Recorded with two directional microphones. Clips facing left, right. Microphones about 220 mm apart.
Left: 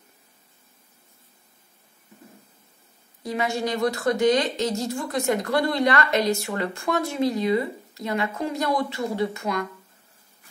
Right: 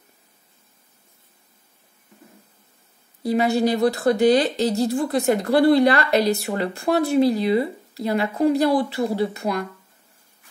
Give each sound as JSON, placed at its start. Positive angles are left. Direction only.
{"t": 3.2, "sound": "speech", "side_deg": -35}